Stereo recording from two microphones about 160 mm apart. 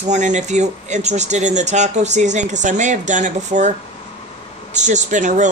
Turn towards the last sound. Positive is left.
turn(degrees=-50)  # may be behind; listen again after turning